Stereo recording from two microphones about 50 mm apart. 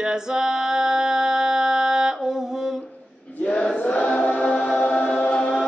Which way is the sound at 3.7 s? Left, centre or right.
Left.